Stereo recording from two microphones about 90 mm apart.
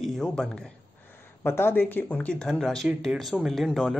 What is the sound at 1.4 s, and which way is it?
Speech, 25° left (ahead or behind).